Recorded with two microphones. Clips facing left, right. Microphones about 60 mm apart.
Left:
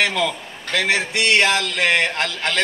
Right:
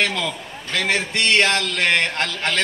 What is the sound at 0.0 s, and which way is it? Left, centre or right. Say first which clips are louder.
Speech: left 2 dB; centre.